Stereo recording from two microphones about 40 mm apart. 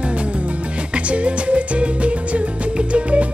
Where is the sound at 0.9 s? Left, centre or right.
Right.